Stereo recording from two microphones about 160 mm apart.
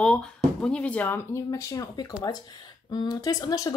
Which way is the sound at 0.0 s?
5° left (ahead or behind).